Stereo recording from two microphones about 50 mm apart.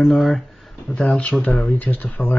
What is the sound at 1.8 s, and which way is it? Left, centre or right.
Speech, left.